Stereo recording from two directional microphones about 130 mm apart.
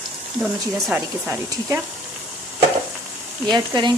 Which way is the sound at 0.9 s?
15° right (ahead or behind).